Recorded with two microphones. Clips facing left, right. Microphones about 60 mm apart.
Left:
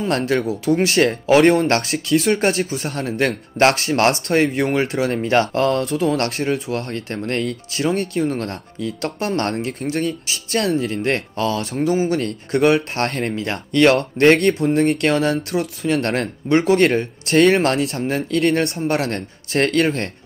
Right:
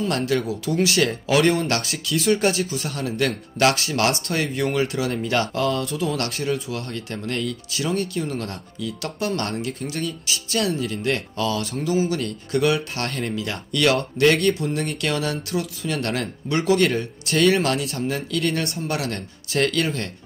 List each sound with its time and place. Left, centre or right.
0.0 s speech: left
18.6 s speech: left
18.9 s speech: left